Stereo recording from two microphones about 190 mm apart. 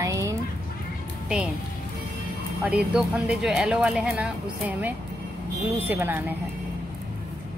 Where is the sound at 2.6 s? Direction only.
5° right (ahead or behind).